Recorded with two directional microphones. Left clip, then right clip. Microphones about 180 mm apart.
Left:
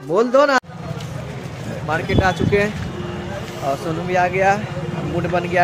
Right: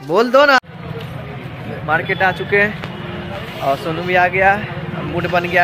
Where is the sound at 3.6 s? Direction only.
10° right (ahead or behind).